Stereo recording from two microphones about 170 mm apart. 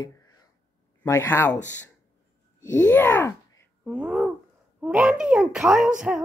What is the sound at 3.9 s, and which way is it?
A child's voice, 5° right (ahead or behind).